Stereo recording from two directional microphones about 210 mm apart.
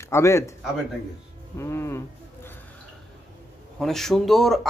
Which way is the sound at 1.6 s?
10° left (ahead or behind).